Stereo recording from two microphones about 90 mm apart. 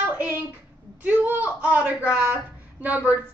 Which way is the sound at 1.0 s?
20° right (ahead or behind).